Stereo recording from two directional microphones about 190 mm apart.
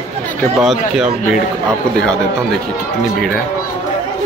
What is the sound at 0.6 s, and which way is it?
Speech, 5° right (ahead or behind).